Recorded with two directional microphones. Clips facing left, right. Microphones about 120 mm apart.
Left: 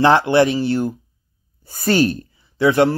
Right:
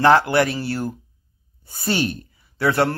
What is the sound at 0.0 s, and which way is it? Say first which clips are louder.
Speech: left 2 dB; 25° left (ahead or behind).